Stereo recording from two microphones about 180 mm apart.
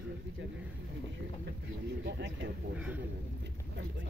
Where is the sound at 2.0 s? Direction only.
75° right (ahead or behind).